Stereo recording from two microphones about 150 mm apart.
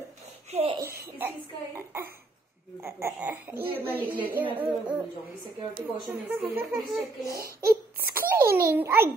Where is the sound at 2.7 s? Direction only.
15° right (ahead or behind).